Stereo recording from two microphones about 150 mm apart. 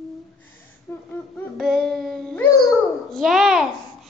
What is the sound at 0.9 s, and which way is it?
Speech, 15° left (ahead or behind).